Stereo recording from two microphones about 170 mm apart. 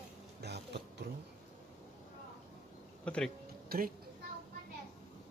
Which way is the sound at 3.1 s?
5° left (ahead or behind).